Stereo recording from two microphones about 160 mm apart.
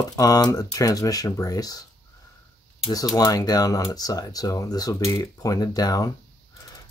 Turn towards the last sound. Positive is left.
turn(degrees=20)  # may be behind; listen again after turning